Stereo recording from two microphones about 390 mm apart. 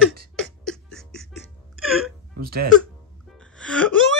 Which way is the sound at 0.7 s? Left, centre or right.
Centre.